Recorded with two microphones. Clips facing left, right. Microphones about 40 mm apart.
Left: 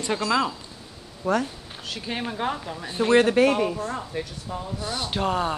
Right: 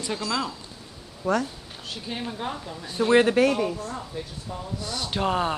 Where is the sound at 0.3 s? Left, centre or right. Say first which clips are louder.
Left 6 dB; left.